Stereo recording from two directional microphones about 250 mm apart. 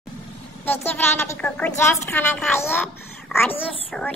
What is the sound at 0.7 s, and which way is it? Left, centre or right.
A woman's voice, centre.